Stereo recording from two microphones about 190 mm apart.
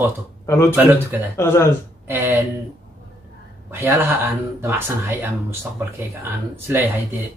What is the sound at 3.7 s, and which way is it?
Speech, 10° right (ahead or behind).